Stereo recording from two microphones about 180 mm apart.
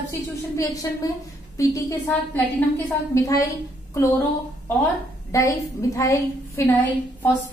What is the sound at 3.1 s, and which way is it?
Speech, 20° left (ahead or behind).